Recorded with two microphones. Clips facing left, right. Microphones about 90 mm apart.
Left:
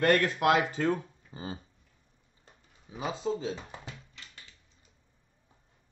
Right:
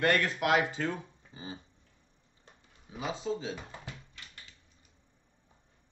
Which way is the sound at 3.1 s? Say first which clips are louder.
Left 3 dB; 40° left (ahead or behind).